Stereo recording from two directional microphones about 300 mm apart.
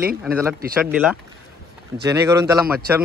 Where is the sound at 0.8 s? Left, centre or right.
Centre.